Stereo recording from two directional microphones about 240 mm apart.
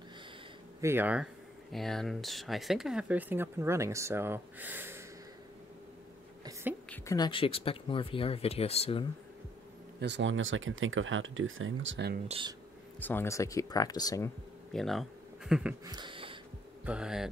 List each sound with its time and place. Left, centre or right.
0.7 s speech: centre
6.9 s speech: centre
9.9 s speech: right
12.3 s speech: right
13.0 s speech: centre
14.7 s speech: centre
15.8 s a sound: centre
16.8 s hum: centre